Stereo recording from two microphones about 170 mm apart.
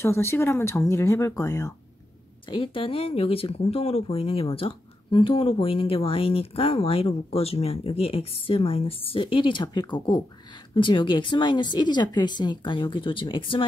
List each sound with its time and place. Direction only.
0.0 s speech: 15° left (ahead or behind)
2.4 s speech: 30° left (ahead or behind)